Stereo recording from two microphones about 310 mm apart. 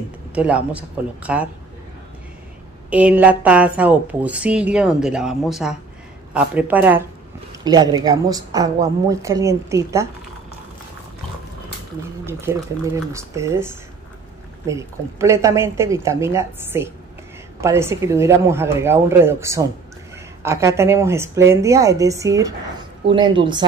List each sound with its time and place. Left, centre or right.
0.3 s a woman's voice: centre
2.9 s a woman's voice: centre
12.3 s a woman's voice: centre